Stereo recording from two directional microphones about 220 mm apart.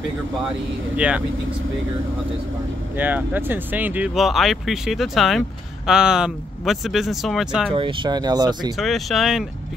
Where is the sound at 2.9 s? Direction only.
10° right (ahead or behind).